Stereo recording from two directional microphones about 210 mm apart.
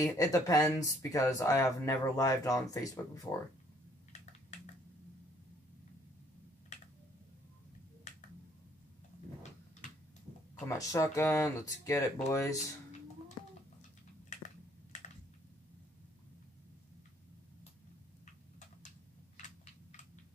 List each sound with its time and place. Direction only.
0.0 s speech: 15° left (ahead or behind)
10.6 s speech: 15° left (ahead or behind)
14.3 s a sound: 35° left (ahead or behind)